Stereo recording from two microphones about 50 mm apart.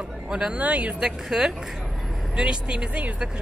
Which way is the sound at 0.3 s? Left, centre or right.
Centre.